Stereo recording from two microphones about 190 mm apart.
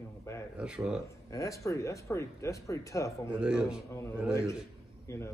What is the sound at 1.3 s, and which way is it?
Speech, 15° left (ahead or behind).